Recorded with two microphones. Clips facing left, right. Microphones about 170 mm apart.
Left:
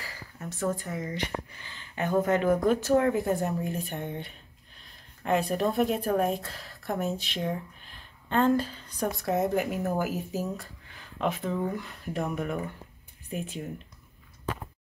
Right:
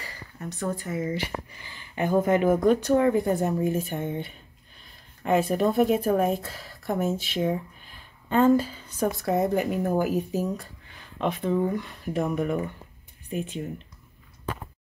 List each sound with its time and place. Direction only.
0.0 s speech: centre (ahead or behind)
2.6 s speech: 5° left (ahead or behind)